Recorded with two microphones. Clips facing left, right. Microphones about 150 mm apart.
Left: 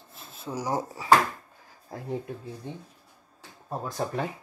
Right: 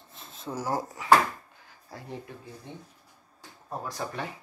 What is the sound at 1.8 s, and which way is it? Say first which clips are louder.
Speech: left 7 dB; 40° left (ahead or behind).